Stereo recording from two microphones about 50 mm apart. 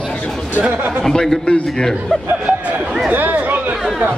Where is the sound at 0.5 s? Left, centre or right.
Right.